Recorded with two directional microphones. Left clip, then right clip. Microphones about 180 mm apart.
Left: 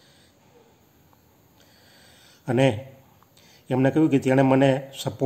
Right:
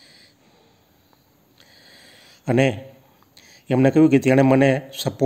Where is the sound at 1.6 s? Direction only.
30° right (ahead or behind).